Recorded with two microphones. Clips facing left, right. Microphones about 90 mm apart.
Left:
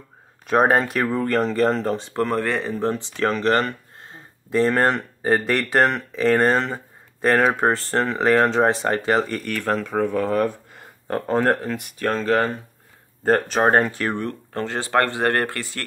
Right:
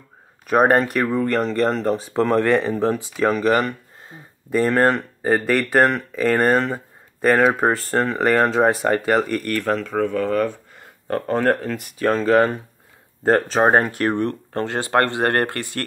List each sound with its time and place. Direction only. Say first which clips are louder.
0.5 s speech: right 2 dB; centre (ahead or behind)
2.7 s speech: right 3 dB; 10° right (ahead or behind); by 11.9 s 10° left (ahead or behind)
12.0 s speech: right 4 dB; 5° right (ahead or behind)
13.2 s speech: right 2 dB; 15° right (ahead or behind)
14.2 s speech: right 4 dB; 35° right (ahead or behind)